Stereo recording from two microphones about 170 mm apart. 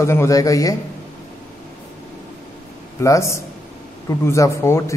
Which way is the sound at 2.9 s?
15° left (ahead or behind).